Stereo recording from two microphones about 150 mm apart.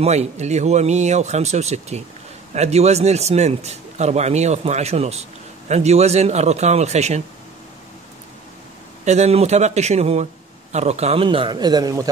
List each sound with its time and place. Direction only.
0.0 s a man's voice: 50° right (ahead or behind)
9.0 s a man's voice: 50° right (ahead or behind)
11.2 s speech: 35° right (ahead or behind)